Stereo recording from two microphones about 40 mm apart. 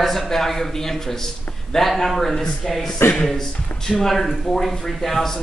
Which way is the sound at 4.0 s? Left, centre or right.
Centre.